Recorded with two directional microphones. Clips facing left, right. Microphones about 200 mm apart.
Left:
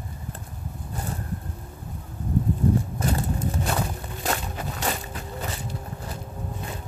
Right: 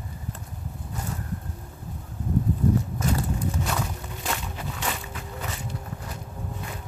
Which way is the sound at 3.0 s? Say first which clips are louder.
Left 1 dB; 35° left (ahead or behind).